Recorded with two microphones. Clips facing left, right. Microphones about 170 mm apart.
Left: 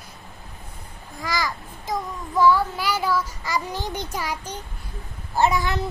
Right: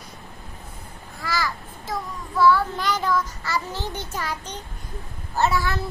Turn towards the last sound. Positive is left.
turn(degrees=20)  # may be behind; listen again after turning